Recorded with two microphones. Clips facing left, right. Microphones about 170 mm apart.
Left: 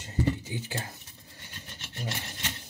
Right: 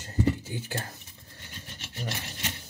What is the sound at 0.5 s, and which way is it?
Speech, 15° left (ahead or behind).